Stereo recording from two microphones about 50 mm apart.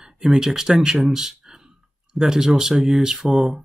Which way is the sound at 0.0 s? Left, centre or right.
Centre.